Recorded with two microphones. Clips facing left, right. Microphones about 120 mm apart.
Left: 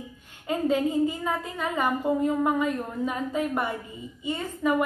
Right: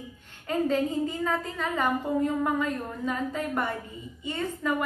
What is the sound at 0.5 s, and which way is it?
A woman's voice, 15° left (ahead or behind).